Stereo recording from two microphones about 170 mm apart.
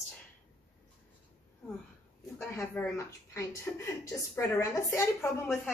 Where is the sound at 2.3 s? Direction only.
15° left (ahead or behind).